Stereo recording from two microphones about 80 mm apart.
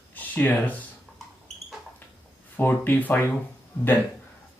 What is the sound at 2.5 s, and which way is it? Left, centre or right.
Speech, left.